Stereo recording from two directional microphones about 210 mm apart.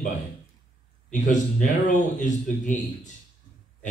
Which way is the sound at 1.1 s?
35° left (ahead or behind).